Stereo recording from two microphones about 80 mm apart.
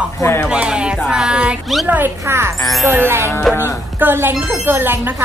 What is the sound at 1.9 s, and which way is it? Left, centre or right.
A woman's voice, right.